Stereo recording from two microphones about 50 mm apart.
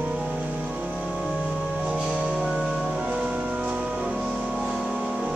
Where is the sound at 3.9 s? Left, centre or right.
Centre.